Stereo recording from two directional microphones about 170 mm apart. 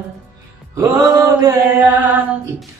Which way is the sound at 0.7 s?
20° right (ahead or behind).